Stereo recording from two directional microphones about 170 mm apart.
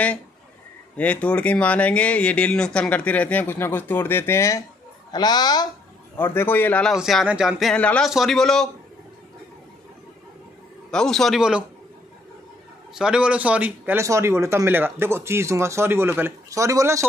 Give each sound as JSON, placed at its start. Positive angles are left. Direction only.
{"t": 0.9, "sound": "a woman's voice", "side_deg": 10}
{"t": 6.1, "sound": "a man's voice", "side_deg": 15}
{"t": 10.9, "sound": "a man's voice", "side_deg": 5}
{"t": 12.9, "sound": "speech", "side_deg": -5}